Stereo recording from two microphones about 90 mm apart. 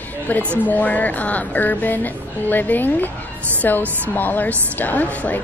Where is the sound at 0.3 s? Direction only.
20° left (ahead or behind).